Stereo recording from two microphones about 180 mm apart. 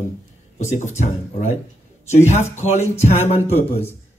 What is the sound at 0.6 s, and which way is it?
Speech, 40° left (ahead or behind).